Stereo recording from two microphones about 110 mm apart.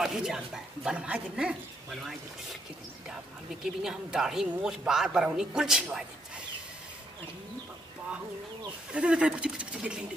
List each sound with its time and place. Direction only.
0.0 s speech: 5° right (ahead or behind)
3.6 s a woman's voice: 5° right (ahead or behind)
8.9 s speech: 10° right (ahead or behind)